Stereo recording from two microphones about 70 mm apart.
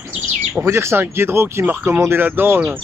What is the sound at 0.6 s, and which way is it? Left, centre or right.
Speech, right.